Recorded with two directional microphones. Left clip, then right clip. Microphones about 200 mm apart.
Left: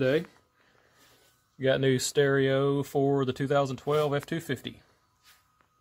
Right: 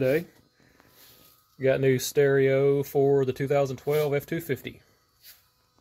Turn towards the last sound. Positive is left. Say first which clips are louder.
# right 3 dB
turn(degrees=0)  # may be behind; listen again after turning